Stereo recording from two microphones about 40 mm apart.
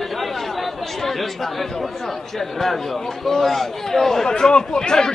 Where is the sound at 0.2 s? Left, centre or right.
Centre.